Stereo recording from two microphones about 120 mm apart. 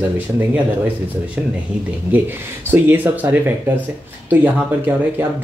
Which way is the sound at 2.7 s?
15° right (ahead or behind).